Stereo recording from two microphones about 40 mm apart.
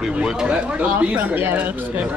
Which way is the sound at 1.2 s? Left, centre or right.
Right.